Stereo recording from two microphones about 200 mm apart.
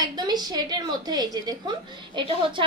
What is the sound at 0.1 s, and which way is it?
A woman's voice, 20° right (ahead or behind).